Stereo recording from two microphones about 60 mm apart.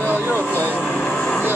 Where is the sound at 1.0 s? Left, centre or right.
Centre.